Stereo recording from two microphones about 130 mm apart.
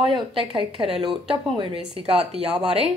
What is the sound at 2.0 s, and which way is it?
Speech, 50° right (ahead or behind).